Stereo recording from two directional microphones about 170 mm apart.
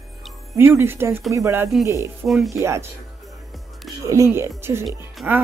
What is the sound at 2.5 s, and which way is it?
Speech, 15° right (ahead or behind).